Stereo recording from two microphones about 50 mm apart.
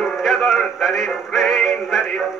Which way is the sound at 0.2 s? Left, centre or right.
Centre.